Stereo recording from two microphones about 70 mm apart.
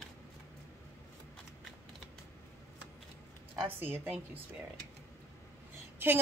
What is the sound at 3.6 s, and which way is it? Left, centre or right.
Speech, right.